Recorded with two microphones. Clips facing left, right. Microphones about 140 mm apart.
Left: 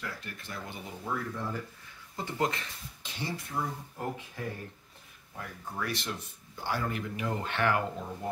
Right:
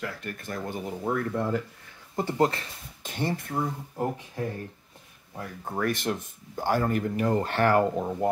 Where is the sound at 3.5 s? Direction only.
30° right (ahead or behind).